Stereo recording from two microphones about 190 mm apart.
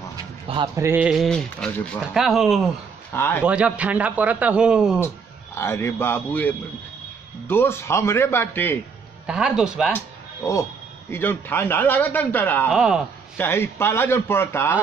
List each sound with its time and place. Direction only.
0.1 s a sound: 20° right (ahead or behind)
0.8 s speech: 5° right (ahead or behind)
3.1 s a man's voice: 10° left (ahead or behind)
3.4 s a man's voice: 5° right (ahead or behind)
5.0 s a man's voice: 15° left (ahead or behind)
9.2 s speech: 5° right (ahead or behind)
9.9 s a man's voice: 15° left (ahead or behind)
12.7 s speech: 5° right (ahead or behind)
13.4 s a man's voice: 10° left (ahead or behind)